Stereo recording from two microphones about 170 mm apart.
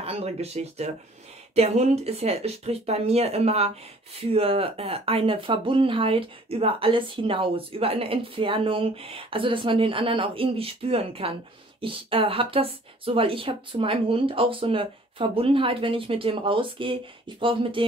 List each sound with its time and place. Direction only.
0.0 s speech: 35° right (ahead or behind)